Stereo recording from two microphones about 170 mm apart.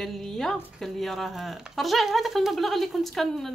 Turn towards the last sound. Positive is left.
turn(degrees=0)  # may be behind; listen again after turning